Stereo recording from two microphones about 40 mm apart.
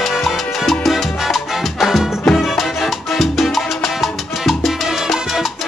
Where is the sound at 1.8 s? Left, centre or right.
Centre.